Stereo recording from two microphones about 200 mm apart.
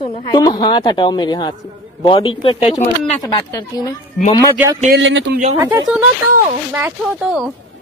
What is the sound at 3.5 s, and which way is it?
Speech, 15° left (ahead or behind).